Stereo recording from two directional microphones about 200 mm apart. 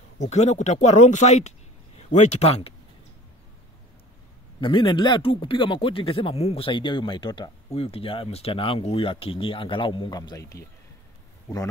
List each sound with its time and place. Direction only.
0.2 s speech: 35° left (ahead or behind)
4.6 s speech: 25° left (ahead or behind)